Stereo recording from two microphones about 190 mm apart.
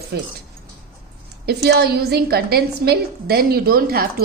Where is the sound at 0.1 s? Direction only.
60° right (ahead or behind).